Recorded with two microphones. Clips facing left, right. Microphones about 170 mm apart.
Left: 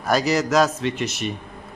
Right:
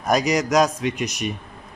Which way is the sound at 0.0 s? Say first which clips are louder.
Even; 15° right (ahead or behind).